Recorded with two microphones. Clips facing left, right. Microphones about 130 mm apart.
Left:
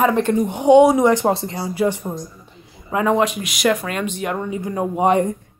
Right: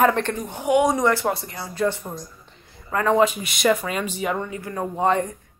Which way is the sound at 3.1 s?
Centre (ahead or behind).